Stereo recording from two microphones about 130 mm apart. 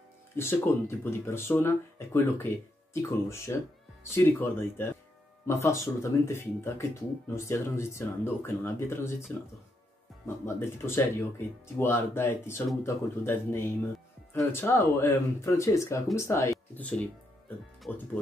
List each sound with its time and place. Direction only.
0.4 s speech: 20° left (ahead or behind)
10.2 s speech: 20° left (ahead or behind)
17.8 s speech: centre (ahead or behind)